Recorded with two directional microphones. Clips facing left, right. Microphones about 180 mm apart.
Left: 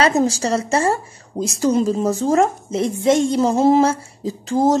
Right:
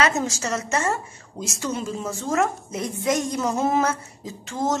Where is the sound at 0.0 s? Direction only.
35° left (ahead or behind).